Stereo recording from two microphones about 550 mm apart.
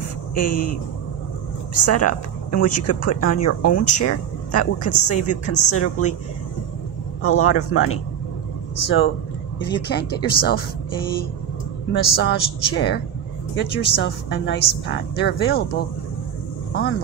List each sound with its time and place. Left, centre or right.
0.4 s speech: left
1.7 s speech: left
7.2 s speech: left
11.9 s speech: centre